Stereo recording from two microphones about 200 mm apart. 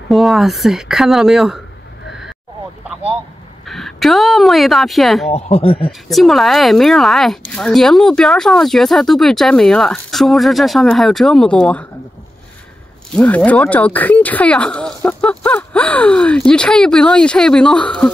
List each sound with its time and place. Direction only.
0.1 s speech: centre (ahead or behind)
3.6 s speech: centre (ahead or behind)
5.3 s speech: 30° left (ahead or behind)
5.8 s speech: centre (ahead or behind)
13.1 s speech: 5° left (ahead or behind)